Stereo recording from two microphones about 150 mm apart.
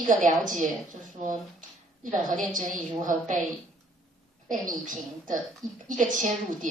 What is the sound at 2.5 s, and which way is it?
Speech, 60° right (ahead or behind).